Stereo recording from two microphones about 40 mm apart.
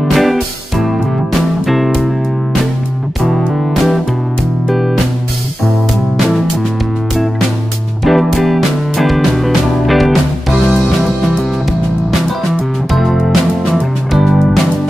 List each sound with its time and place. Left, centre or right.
0.1 s music: centre
4.6 s music: centre
6.1 s music: centre
8.0 s music: centre
12.9 s music: centre